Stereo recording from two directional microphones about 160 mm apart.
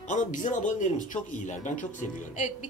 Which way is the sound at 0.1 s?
50° left (ahead or behind).